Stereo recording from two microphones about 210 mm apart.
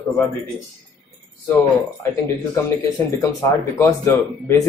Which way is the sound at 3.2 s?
15° left (ahead or behind).